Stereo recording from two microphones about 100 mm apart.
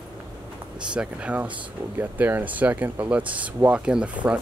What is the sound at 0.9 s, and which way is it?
Speech, 15° right (ahead or behind).